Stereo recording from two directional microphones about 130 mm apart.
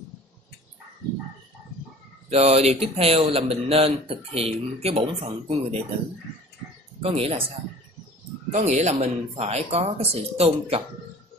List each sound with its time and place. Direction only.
2.2 s speech: 55° right (ahead or behind)
7.0 s speech: 50° right (ahead or behind)
8.5 s speech: 60° right (ahead or behind)